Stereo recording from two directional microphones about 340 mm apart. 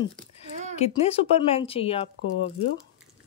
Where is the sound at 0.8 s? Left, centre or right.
Centre.